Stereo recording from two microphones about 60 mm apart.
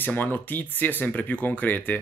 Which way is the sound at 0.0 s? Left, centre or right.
Left.